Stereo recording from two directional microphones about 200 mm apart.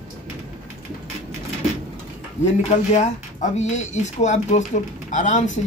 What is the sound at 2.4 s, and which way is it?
Speech, 35° left (ahead or behind).